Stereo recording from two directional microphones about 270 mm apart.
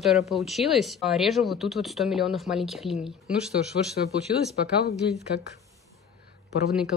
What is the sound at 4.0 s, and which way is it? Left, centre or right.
Speech, left.